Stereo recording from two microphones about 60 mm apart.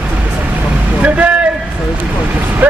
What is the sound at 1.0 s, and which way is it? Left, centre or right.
Speech, right.